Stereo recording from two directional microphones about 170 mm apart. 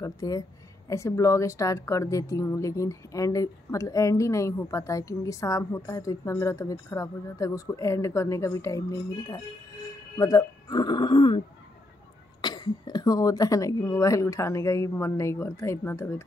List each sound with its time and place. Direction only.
0.0 s a woman's voice: 20° left (ahead or behind)